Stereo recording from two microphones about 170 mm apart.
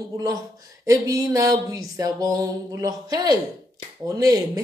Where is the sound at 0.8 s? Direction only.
20° right (ahead or behind).